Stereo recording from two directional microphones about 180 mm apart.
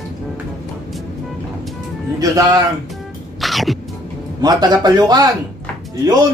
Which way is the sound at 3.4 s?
Centre (ahead or behind).